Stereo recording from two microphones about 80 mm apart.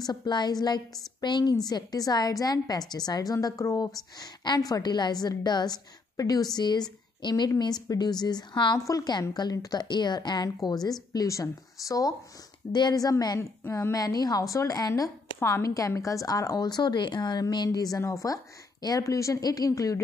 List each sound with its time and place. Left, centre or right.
0.0 s a woman's voice: left
8.7 s a woman's voice: left
12.7 s a woman's voice: left
13.4 s a woman's voice: left
13.9 s a woman's voice: left
15.3 s a woman's voice: left
17.6 s a woman's voice: left